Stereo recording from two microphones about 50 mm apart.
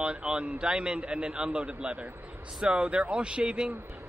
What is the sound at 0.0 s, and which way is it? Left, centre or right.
A man's voice, centre.